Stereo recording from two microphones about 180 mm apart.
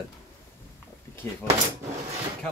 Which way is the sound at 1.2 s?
15° left (ahead or behind).